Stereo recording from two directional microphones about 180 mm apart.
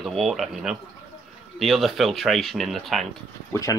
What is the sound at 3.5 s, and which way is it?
Speech, 20° left (ahead or behind).